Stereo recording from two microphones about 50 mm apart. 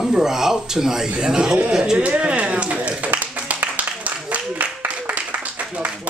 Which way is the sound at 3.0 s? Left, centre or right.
Right.